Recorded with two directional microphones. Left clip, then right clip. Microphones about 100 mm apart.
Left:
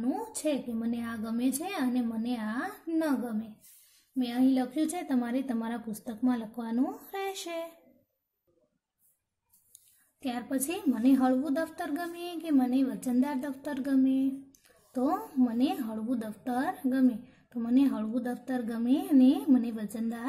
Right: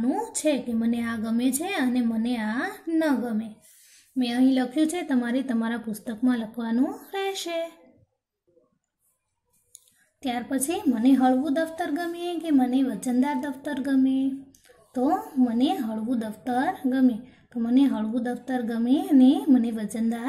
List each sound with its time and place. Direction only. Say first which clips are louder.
0.0 s a sound: right 7 dB; 15° left (ahead or behind)
0.7 s a woman's voice: right 7 dB; 15° left (ahead or behind)
10.2 s a woman's voice: right 6 dB; 20° left (ahead or behind)